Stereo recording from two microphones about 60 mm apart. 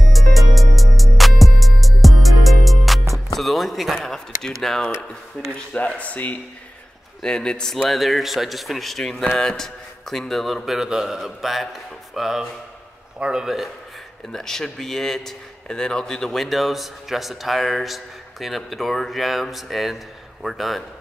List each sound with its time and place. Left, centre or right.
0.1 s music: centre
3.3 s speech: centre
5.5 s speech: left
7.2 s speech: centre
7.7 s a man's voice: centre
14.3 s a man's voice: centre